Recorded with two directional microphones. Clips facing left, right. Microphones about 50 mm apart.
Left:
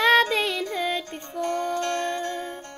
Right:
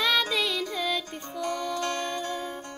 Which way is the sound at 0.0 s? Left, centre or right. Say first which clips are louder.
Left 6 dB; left.